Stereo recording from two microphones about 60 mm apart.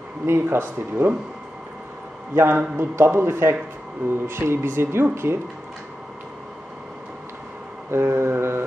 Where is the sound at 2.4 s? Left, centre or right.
Right.